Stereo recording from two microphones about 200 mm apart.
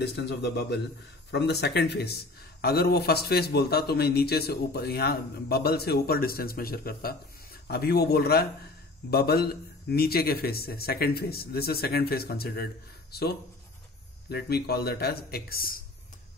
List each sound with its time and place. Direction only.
0.0 s a man's voice: 55° left (ahead or behind)